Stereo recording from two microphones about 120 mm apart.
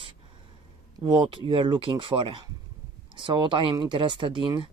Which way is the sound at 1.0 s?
45° right (ahead or behind).